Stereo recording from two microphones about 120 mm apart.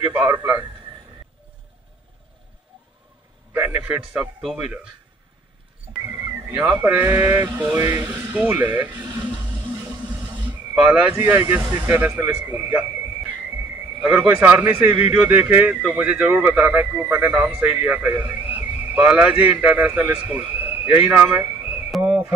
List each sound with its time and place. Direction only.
0.3 s speech: 20° right (ahead or behind)
3.5 s a man's voice: 15° right (ahead or behind)
6.5 s speech: 5° right (ahead or behind)
6.8 s speech: 20° right (ahead or behind)
10.4 s speech: 10° right (ahead or behind)
12.4 s a sound: 20° right (ahead or behind)
14.0 s speech: 10° right (ahead or behind)
21.4 s a sound: 20° right (ahead or behind)